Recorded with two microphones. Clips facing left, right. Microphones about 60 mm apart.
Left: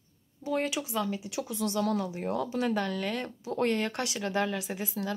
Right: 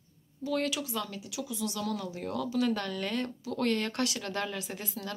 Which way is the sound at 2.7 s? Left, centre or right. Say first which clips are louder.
Left 2 dB; centre.